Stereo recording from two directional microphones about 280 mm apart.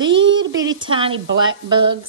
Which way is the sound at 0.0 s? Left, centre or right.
Centre.